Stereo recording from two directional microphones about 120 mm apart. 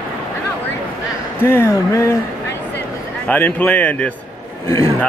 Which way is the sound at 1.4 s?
20° left (ahead or behind).